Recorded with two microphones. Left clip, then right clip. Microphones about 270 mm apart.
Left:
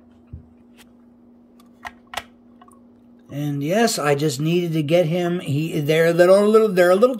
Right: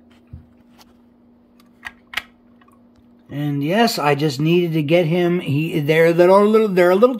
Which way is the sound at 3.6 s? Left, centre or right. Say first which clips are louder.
Right 2 dB; centre.